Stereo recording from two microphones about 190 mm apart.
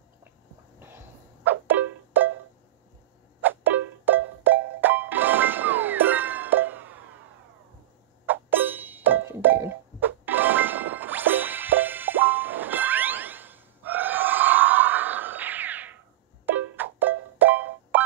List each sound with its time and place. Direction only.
0.7 s music: 10° right (ahead or behind)
3.3 s music: 10° right (ahead or behind)
8.3 s music: 10° right (ahead or behind)